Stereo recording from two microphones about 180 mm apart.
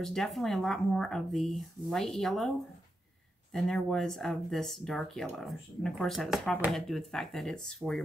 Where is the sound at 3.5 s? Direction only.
Centre (ahead or behind).